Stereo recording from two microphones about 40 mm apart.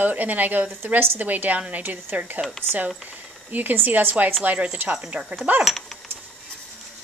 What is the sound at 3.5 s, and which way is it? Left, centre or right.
Speech, right.